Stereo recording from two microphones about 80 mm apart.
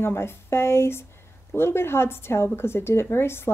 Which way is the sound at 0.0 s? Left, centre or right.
Left.